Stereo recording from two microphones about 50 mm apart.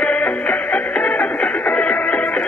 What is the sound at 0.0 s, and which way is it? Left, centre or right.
Music, left.